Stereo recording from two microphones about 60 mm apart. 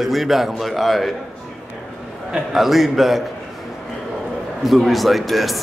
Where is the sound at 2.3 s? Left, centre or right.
Centre.